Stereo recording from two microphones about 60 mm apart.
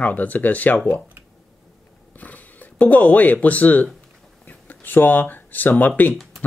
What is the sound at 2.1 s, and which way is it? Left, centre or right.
Speech, left.